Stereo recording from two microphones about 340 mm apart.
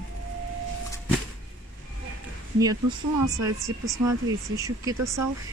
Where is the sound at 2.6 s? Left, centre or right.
Centre.